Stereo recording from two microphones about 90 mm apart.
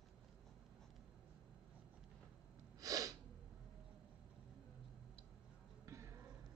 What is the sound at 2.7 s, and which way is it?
Sneeze, 40° right (ahead or behind).